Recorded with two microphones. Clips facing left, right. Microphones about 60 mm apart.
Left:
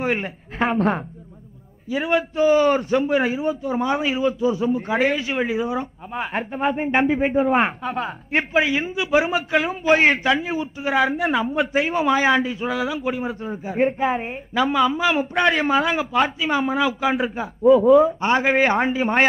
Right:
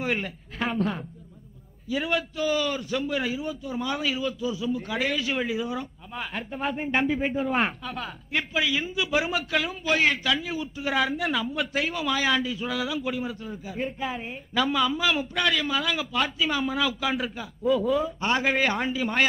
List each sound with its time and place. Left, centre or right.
0.0 s a woman's voice: left
0.7 s a man's voice: left
1.9 s speech: left
2.6 s a man's voice: left
9.7 s a man's voice: left
13.5 s a man's voice: left
13.9 s a man's voice: left
14.5 s speech: left
17.2 s a man's voice: left